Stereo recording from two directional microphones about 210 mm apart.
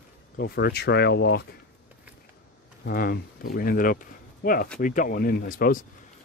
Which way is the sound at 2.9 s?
45° left (ahead or behind).